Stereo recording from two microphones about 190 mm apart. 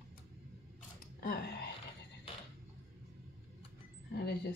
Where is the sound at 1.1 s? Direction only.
55° left (ahead or behind).